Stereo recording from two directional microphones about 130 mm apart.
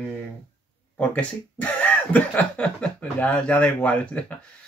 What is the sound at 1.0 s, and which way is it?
Speech, 10° left (ahead or behind).